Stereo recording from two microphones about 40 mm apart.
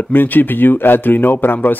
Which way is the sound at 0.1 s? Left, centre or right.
Left.